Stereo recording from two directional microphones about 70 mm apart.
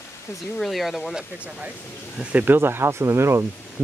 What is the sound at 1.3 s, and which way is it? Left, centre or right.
Speech, centre.